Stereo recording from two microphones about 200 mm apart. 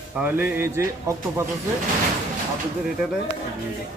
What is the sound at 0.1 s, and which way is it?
Speech, 10° right (ahead or behind).